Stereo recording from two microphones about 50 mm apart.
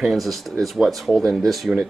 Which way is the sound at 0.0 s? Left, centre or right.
Centre.